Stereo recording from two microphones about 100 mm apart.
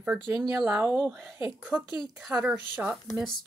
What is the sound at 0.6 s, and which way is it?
A woman's voice, 20° right (ahead or behind).